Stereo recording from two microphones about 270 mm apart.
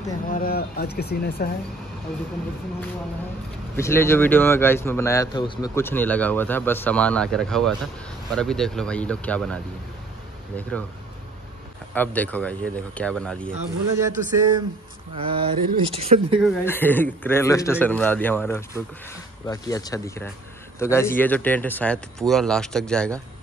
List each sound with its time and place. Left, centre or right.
0.3 s speech: left
3.7 s speech: centre
11.9 s speech: centre
13.5 s speech: centre
16.3 s speech: centre